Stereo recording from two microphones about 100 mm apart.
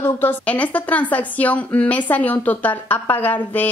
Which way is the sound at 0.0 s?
20° left (ahead or behind).